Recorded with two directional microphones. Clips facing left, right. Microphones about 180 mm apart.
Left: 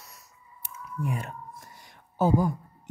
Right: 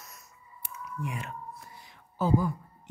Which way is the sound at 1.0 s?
40° left (ahead or behind).